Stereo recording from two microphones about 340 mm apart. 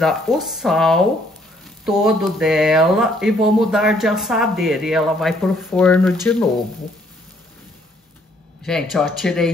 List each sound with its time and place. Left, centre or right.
0.0 s speech: centre
8.6 s speech: centre